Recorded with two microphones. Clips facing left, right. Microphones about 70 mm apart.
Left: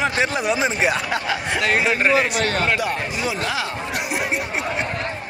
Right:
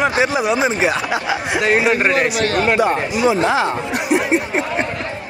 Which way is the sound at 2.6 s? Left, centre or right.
Right.